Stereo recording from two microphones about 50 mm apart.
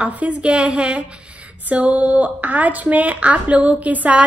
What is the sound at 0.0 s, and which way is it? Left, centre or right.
A woman's voice, right.